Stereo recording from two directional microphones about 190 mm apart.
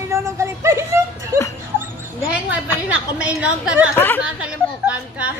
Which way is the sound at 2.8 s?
5° right (ahead or behind).